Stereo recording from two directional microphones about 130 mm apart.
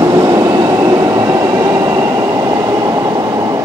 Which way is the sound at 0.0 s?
30° right (ahead or behind).